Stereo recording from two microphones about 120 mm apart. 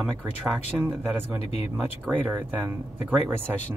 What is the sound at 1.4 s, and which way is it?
Speech, 60° left (ahead or behind).